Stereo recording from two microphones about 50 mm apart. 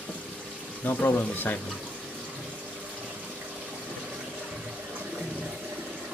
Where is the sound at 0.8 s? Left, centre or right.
Left.